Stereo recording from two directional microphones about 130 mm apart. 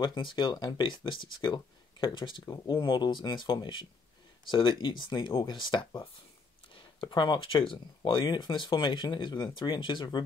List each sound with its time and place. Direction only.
0.0 s speech: 35° left (ahead or behind)